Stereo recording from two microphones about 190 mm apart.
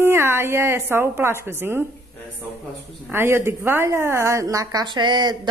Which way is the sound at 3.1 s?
10° right (ahead or behind).